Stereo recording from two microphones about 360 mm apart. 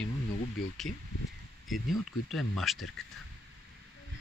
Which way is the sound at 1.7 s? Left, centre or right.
Centre.